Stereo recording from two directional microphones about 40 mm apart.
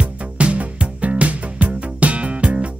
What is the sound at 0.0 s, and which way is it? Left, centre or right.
Music, right.